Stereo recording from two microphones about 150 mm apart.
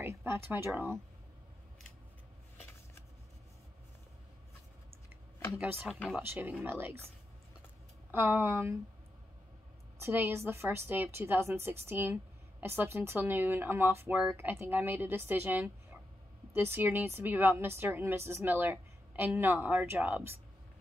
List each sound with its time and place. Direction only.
0.0 s a sound: 15° right (ahead or behind)
5.6 s a woman's voice: 10° right (ahead or behind)
5.9 s speech: 5° left (ahead or behind)
6.1 s a woman's voice: 10° right (ahead or behind)
8.1 s a woman's voice: 15° right (ahead or behind)
9.9 s a woman's voice: 15° right (ahead or behind)